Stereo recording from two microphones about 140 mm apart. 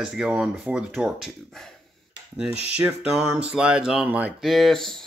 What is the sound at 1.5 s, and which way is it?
Speech, 5° left (ahead or behind).